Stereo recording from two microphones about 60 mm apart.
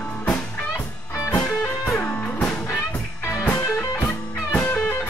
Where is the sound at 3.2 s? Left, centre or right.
Left.